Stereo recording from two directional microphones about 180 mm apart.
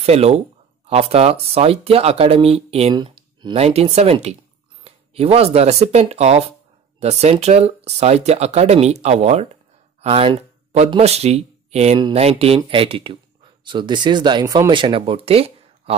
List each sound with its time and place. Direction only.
0.0 s speech: 35° right (ahead or behind)